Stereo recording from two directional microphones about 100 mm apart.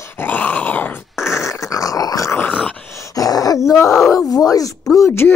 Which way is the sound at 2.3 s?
20° left (ahead or behind).